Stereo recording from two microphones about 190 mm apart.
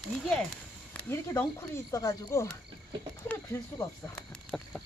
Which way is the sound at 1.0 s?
15° left (ahead or behind).